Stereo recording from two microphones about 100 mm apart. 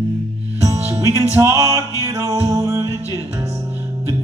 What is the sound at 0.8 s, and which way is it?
Music, 30° right (ahead or behind).